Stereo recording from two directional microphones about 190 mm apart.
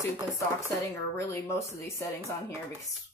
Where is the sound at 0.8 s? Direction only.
15° left (ahead or behind).